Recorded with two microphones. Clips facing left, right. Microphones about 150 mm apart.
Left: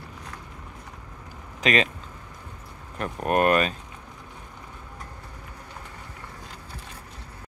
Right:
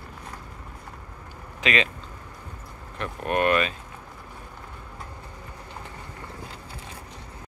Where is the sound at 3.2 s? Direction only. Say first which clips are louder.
Left 2 dB; 45° left (ahead or behind).